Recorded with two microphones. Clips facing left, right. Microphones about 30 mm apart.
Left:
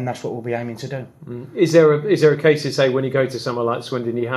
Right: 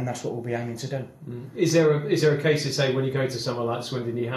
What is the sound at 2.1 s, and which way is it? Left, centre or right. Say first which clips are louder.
Speech: left 7 dB; left.